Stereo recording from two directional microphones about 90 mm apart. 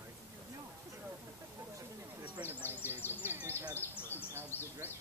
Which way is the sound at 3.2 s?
25° right (ahead or behind).